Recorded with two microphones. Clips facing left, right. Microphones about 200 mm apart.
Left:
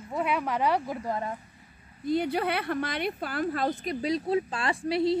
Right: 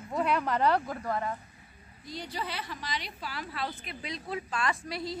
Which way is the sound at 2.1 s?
60° left (ahead or behind).